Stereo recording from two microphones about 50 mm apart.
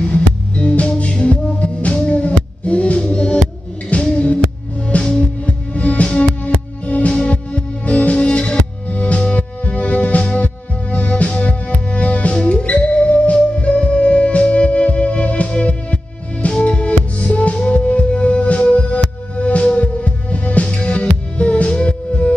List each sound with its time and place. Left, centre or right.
0.0 s music: left
5.4 s music: left